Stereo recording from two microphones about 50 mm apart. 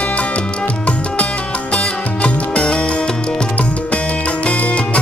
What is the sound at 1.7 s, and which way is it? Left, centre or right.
Music, centre.